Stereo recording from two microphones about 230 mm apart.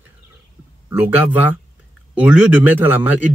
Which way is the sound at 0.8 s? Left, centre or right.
Centre.